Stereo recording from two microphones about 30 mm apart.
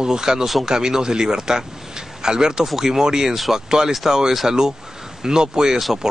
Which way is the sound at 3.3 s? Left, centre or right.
Centre.